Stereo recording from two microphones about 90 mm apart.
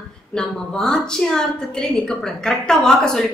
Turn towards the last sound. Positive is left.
turn(degrees=5)  # may be behind; listen again after turning